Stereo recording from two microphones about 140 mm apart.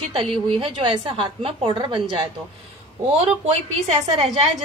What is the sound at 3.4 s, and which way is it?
Speech, 50° right (ahead or behind).